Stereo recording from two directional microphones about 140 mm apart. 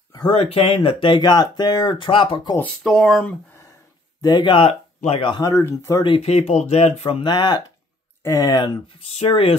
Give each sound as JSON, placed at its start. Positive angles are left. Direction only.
{"t": 0.3, "sound": "speech", "side_deg": 45}
{"t": 2.8, "sound": "speech", "side_deg": 0}
{"t": 4.2, "sound": "speech", "side_deg": 35}
{"t": 5.3, "sound": "speech", "side_deg": 25}
{"t": 6.0, "sound": "speech", "side_deg": 45}
{"t": 9.1, "sound": "speech", "side_deg": 45}